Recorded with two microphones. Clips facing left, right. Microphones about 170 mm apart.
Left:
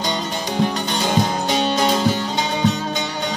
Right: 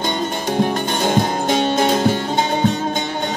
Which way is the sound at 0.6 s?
50° right (ahead or behind).